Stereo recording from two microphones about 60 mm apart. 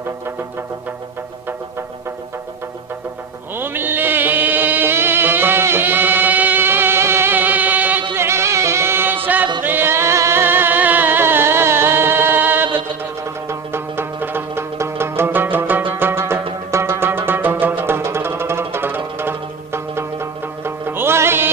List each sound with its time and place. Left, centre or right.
3.5 s music: right
7.3 s music: right
8.1 s music: right
10.4 s music: right